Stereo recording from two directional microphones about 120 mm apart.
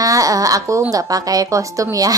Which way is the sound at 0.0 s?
30° right (ahead or behind).